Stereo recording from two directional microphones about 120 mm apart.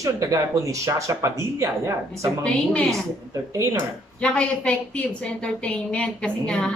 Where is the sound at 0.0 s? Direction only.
30° right (ahead or behind).